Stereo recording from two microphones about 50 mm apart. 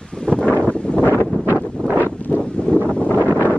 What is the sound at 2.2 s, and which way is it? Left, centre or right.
Wind, left.